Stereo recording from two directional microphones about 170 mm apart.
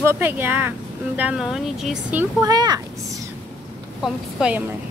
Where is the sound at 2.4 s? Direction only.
25° right (ahead or behind).